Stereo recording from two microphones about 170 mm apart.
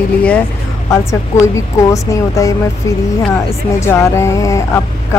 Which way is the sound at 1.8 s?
20° left (ahead or behind).